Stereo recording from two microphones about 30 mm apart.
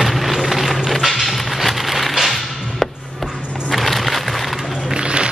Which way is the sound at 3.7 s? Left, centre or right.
Centre.